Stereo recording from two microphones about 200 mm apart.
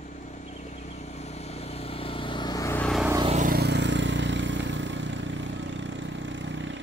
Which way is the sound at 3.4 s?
50° right (ahead or behind).